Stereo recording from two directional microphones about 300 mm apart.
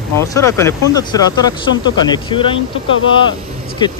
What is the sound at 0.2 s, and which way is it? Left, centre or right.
Speech, centre.